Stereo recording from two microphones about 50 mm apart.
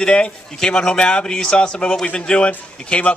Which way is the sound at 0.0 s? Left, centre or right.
Centre.